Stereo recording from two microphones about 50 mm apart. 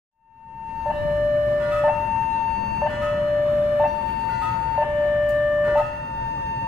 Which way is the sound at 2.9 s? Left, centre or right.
Centre.